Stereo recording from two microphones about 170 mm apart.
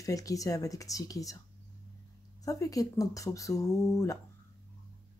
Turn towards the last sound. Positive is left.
turn(degrees=20)  # may be behind; listen again after turning